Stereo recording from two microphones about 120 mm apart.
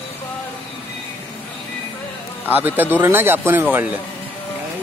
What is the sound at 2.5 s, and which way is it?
Speech, 15° right (ahead or behind).